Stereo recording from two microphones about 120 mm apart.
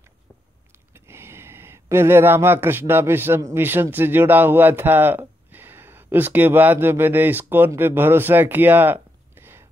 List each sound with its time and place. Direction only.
0.9 s speech: 20° right (ahead or behind)